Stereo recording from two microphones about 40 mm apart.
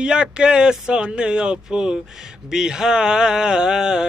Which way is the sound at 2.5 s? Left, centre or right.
Centre.